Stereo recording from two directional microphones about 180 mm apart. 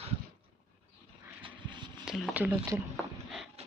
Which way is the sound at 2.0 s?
Centre (ahead or behind).